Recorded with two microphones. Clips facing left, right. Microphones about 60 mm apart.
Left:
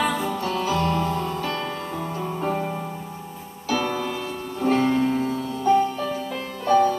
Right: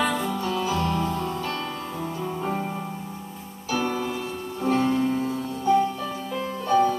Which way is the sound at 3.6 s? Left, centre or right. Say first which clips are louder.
Left 2 dB; left.